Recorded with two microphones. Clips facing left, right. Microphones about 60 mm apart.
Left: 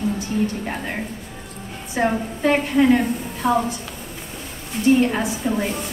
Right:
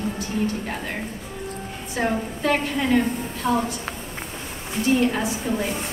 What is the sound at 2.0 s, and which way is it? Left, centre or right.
A woman's voice, centre.